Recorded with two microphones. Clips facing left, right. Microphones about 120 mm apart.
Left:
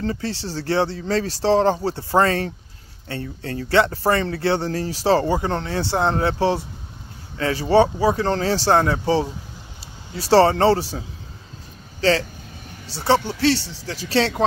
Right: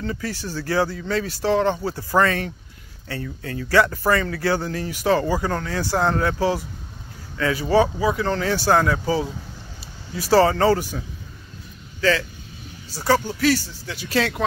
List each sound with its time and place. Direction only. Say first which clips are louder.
0.0 s speech: left 2 dB; 30° left (ahead or behind)